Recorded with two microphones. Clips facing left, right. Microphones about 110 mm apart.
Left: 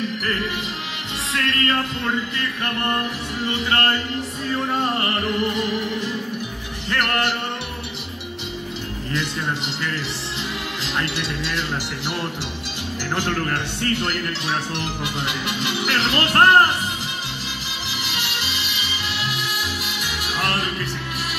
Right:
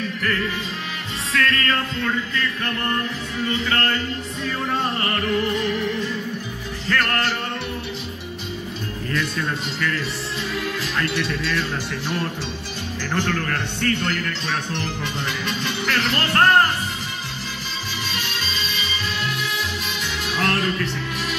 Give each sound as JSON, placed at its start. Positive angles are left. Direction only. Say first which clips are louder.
{"t": 1.3, "sound": "music", "louder": "right 1 dB", "side_deg": 20}
{"t": 6.9, "sound": "music", "louder": "even", "side_deg": 15}
{"t": 11.0, "sound": "speech", "louder": "right 1 dB", "side_deg": 15}
{"t": 13.1, "sound": "music", "louder": "even", "side_deg": 20}
{"t": 14.7, "sound": "speech", "louder": "even", "side_deg": 15}
{"t": 18.1, "sound": "music", "louder": "even", "side_deg": 15}
{"t": 20.0, "sound": "music", "louder": "right 2 dB", "side_deg": 10}